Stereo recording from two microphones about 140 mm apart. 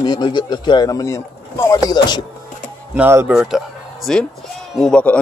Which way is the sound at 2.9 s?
15° right (ahead or behind).